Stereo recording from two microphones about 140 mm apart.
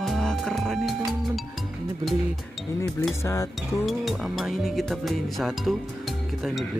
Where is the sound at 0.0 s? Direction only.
5° left (ahead or behind).